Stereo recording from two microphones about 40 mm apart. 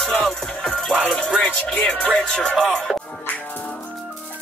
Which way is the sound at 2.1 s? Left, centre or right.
Centre.